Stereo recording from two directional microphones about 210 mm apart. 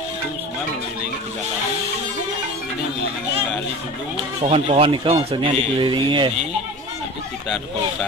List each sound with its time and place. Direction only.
4.4 s speech: 25° right (ahead or behind)